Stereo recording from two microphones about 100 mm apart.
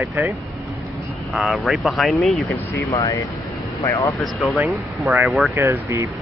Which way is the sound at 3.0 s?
40° left (ahead or behind).